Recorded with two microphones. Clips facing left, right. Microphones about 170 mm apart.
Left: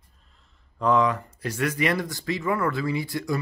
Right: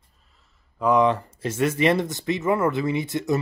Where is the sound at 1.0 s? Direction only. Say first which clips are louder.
Right 4 dB; 25° right (ahead or behind).